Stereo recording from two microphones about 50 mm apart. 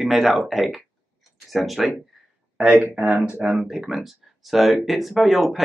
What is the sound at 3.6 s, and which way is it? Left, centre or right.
Speech, centre.